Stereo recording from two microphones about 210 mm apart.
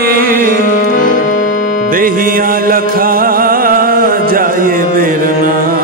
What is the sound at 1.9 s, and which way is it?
Music, 40° right (ahead or behind).